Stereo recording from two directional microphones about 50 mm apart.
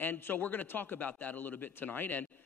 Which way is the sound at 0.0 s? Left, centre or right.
Left.